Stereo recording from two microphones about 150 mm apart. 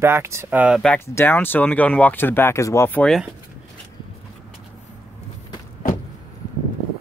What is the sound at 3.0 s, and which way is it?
Speech, centre (ahead or behind).